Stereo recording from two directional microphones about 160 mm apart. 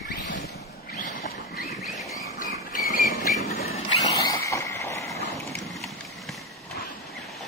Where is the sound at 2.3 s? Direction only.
60° left (ahead or behind).